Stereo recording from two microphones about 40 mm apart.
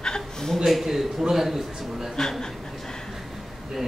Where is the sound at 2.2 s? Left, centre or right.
Centre.